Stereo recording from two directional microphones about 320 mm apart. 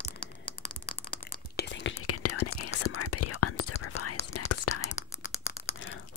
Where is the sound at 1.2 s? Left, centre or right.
Left.